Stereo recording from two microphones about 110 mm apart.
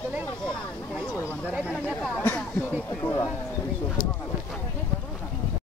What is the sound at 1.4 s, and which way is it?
Speech, 15° right (ahead or behind).